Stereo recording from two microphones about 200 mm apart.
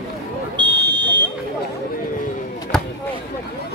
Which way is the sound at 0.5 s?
20° right (ahead or behind).